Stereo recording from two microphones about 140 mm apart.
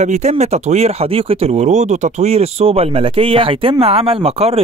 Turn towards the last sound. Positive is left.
turn(degrees=-45)  # may be behind; listen again after turning